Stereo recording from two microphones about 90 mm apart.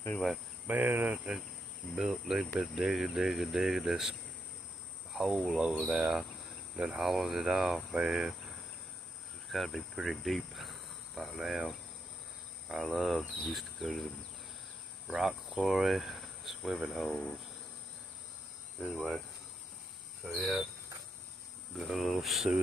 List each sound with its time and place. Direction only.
0.1 s speech: 5° left (ahead or behind)
0.7 s cricket: 20° right (ahead or behind)
2.0 s speech: 5° right (ahead or behind)
5.6 s speech: 10° right (ahead or behind)
9.5 s cricket: centre (ahead or behind)
11.4 s speech: centre (ahead or behind)
12.6 s cricket: centre (ahead or behind)
13.5 s speech: centre (ahead or behind)
15.0 s speech: 5° right (ahead or behind)
18.8 s speech: 5° left (ahead or behind)
20.2 s speech: centre (ahead or behind)
21.7 s speech: centre (ahead or behind)